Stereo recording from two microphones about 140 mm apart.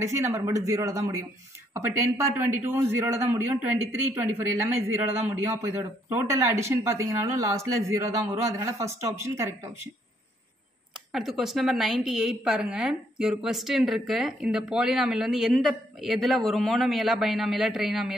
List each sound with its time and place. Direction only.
0.0 s speech: 20° right (ahead or behind)
11.1 s a woman's voice: centre (ahead or behind)